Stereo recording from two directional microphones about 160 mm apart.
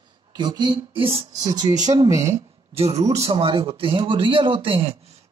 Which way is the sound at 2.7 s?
40° right (ahead or behind).